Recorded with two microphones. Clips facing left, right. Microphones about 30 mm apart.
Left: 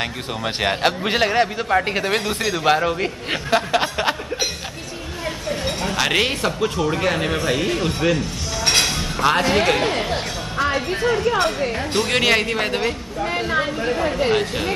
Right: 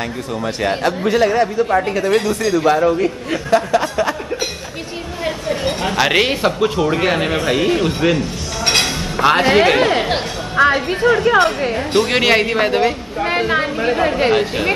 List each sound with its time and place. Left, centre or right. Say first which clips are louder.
0.6 s a man's voice: right 1 dB; left
5.2 s speech: right 5 dB; right
9.4 s speech: right 5 dB; right
10.0 s music: right 4 dB; right
11.7 s a woman's voice: right 5 dB; centre
13.2 s a woman's voice: right 6 dB; right
13.6 s speech: right 4 dB; right
14.3 s speech: right 4 dB; centre